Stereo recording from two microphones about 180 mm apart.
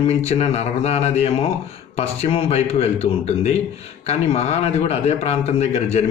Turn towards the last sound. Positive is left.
turn(degrees=35)  # may be behind; listen again after turning